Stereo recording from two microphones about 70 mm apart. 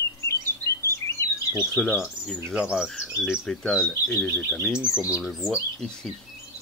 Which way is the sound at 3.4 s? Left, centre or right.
Centre.